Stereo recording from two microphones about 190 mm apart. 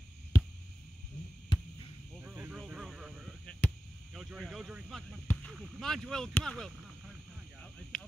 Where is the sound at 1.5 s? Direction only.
25° left (ahead or behind).